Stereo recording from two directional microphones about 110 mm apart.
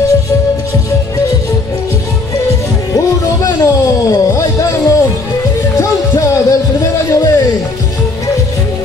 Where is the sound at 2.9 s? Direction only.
30° left (ahead or behind).